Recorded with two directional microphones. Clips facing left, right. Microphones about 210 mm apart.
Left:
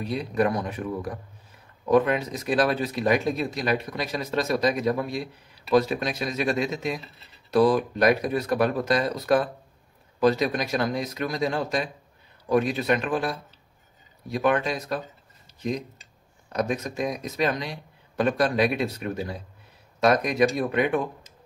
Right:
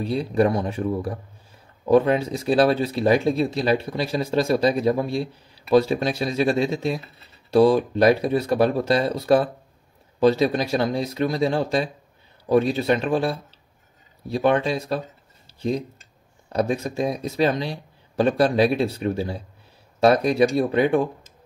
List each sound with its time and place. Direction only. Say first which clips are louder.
0.0 s speech: right 4 dB; 30° right (ahead or behind)